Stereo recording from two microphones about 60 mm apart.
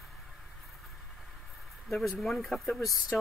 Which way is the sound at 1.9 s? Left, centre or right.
Centre.